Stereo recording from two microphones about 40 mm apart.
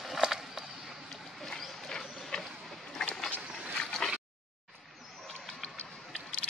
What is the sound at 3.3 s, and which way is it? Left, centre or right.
Vehicle, left.